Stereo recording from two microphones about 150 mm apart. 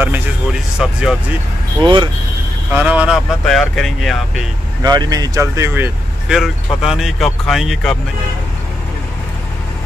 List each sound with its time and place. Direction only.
0.0 s a sound: 10° right (ahead or behind)
1.8 s speech: 30° right (ahead or behind)
2.7 s speech: 10° right (ahead or behind)
3.4 s speech: centre (ahead or behind)
4.8 s speech: 25° right (ahead or behind)
6.2 s speech: centre (ahead or behind)